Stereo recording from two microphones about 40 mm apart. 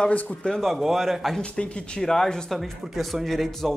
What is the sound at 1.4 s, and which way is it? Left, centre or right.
Speech, left.